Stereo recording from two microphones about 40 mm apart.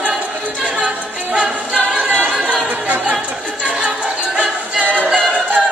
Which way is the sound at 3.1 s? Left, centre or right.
Right.